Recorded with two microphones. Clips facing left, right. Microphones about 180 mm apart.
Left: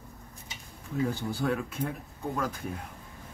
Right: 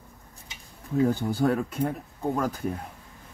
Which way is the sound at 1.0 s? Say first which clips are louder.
Right 6 dB; 40° right (ahead or behind).